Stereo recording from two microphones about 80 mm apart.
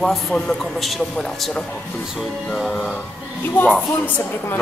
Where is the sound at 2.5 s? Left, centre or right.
Centre.